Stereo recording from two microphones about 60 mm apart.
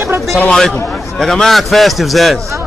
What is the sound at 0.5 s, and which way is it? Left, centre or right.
A man's voice, centre.